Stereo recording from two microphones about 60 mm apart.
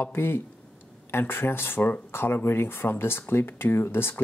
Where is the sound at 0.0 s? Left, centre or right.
Left.